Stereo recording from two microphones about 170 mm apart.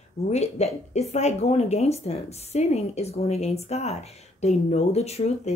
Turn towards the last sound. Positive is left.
turn(degrees=40)  # may be behind; listen again after turning